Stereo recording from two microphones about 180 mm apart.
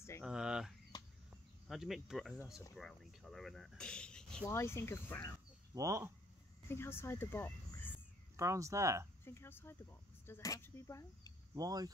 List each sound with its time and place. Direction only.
0.2 s a sound: 5° right (ahead or behind)
1.7 s speech: centre (ahead or behind)
5.8 s speech: 15° right (ahead or behind)
6.7 s speech: 15° left (ahead or behind)
8.4 s speech: 15° right (ahead or behind)
9.2 s speech: 15° left (ahead or behind)
11.5 s speech: 20° right (ahead or behind)